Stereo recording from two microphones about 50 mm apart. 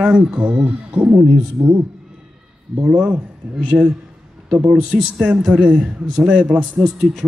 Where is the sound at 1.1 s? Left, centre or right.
Right.